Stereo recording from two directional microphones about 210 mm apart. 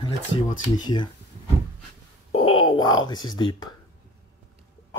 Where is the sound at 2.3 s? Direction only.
25° left (ahead or behind).